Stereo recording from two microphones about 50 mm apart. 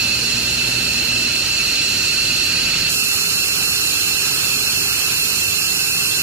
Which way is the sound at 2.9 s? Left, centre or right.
Right.